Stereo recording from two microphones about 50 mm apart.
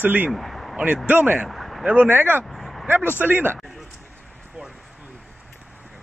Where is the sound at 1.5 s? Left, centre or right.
Centre.